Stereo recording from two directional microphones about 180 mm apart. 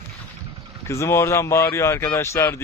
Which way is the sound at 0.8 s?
15° left (ahead or behind).